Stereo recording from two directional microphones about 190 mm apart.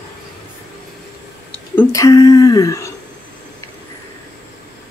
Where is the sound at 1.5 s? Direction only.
15° left (ahead or behind).